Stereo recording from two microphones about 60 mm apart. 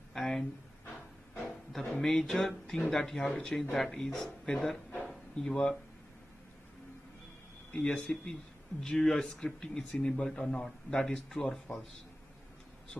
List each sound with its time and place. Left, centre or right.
0.1 s speech: centre
1.7 s speech: centre
7.7 s speech: centre